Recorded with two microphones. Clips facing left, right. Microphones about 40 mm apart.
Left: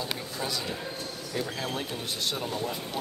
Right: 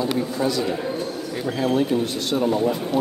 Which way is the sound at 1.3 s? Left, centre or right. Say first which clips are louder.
Right 10 dB; centre.